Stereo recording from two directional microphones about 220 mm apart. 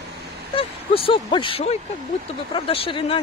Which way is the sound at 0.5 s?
25° left (ahead or behind).